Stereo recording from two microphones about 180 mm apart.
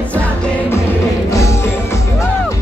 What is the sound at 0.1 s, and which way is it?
Music, 10° left (ahead or behind).